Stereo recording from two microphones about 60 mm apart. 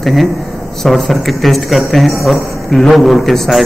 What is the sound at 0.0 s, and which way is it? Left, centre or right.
A man's voice, centre.